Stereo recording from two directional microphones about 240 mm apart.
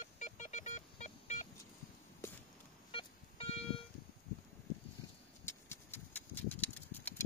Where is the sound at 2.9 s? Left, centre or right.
Left.